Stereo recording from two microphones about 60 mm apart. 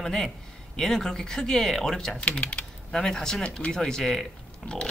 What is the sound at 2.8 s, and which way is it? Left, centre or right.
Speech, centre.